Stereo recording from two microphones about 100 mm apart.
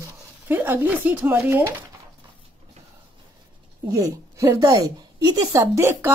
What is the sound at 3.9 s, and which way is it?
A woman's voice, 35° right (ahead or behind).